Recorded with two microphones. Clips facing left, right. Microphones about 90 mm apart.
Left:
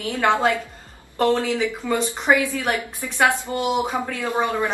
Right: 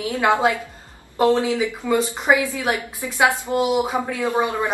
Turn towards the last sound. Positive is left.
turn(degrees=-15)  # may be behind; listen again after turning